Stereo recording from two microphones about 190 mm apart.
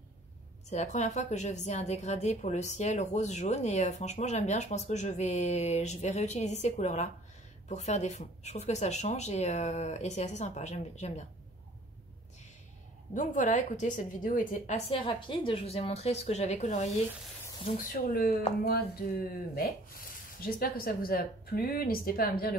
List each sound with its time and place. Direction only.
0.7 s a woman's voice: 35° left (ahead or behind)
13.1 s a woman's voice: 40° left (ahead or behind)
17.7 s speech: 50° left (ahead or behind)
18.6 s a sound: 55° left (ahead or behind)
19.5 s speech: 50° left (ahead or behind)